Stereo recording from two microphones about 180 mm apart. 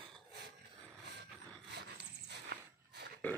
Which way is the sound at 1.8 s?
65° right (ahead or behind).